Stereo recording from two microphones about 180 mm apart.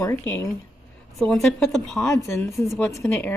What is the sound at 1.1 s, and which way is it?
A woman's voice, centre (ahead or behind).